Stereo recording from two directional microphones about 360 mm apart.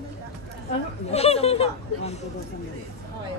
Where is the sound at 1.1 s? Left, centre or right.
Centre.